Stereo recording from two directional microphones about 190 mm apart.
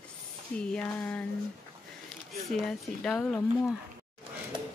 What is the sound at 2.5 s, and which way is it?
Speech, centre (ahead or behind).